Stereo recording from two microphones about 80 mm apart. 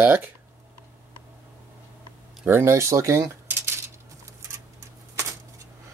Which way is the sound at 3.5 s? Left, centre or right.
Right.